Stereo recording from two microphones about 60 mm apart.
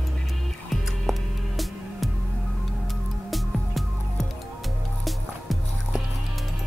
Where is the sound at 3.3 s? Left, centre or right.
Centre.